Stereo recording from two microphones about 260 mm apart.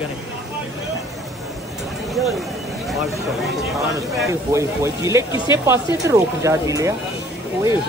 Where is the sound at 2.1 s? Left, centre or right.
Centre.